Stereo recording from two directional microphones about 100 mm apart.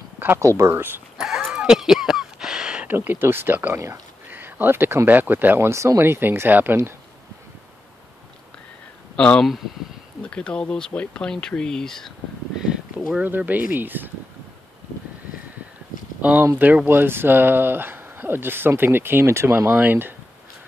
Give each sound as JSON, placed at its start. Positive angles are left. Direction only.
{"t": 0.2, "sound": "speech", "side_deg": -25}
{"t": 1.1, "sound": "a sound", "side_deg": 0}
{"t": 2.9, "sound": "speech", "side_deg": -20}
{"t": 9.1, "sound": "speech", "side_deg": 10}
{"t": 13.2, "sound": "speech", "side_deg": -15}
{"t": 16.2, "sound": "speech", "side_deg": -15}